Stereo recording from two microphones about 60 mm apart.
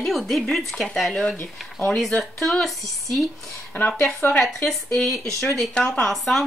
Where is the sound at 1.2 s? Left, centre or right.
Left.